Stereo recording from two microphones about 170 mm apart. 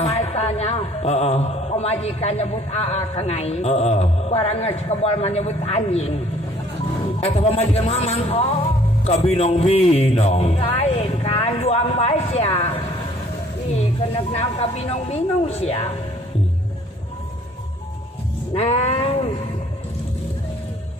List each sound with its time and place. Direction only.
0.0 s a man's voice: 35° left (ahead or behind)
7.2 s a man's voice: 35° left (ahead or behind)
9.0 s music: 35° left (ahead or behind)
14.3 s a man's voice: 40° left (ahead or behind)
18.5 s sheep: 35° left (ahead or behind)